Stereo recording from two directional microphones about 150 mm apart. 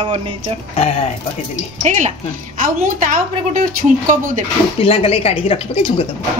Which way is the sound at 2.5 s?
65° right (ahead or behind).